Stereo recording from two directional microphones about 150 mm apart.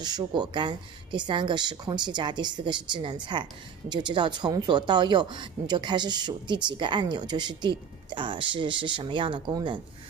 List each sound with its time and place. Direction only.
0.0 s speech: 30° right (ahead or behind)